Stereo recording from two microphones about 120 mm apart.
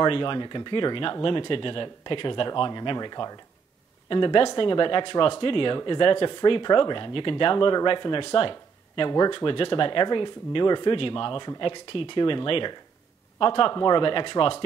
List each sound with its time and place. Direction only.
0.0 s speech: 45° left (ahead or behind)